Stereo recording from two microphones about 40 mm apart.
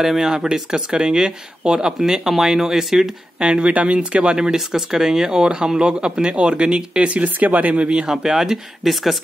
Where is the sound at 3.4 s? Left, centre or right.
Right.